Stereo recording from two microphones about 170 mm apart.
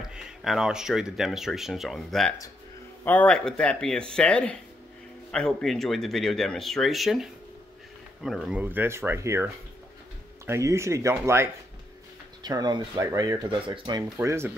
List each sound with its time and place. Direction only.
0.0 s speech: 5° right (ahead or behind)